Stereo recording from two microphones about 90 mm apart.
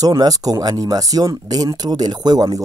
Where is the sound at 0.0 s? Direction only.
45° right (ahead or behind).